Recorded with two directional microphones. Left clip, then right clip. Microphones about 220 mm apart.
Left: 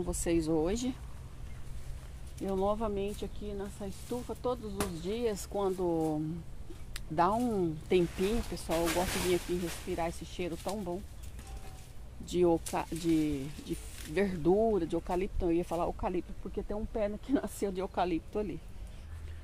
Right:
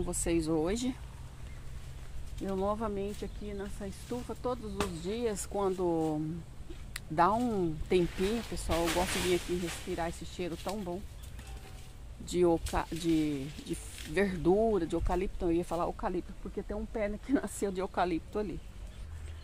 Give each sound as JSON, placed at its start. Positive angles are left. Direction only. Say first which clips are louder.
{"t": 0.0, "sound": "speech", "louder": "even", "side_deg": -5}
{"t": 2.4, "sound": "speech", "louder": "left 1 dB", "side_deg": -5}
{"t": 12.3, "sound": "speech", "louder": "even", "side_deg": -5}